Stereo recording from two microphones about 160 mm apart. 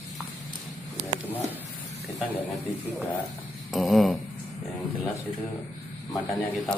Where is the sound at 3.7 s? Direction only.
Centre (ahead or behind).